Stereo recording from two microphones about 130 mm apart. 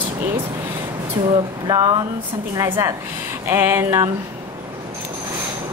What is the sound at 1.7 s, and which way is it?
Speech, 35° right (ahead or behind).